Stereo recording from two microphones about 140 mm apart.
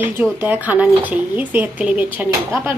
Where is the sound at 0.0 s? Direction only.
15° right (ahead or behind).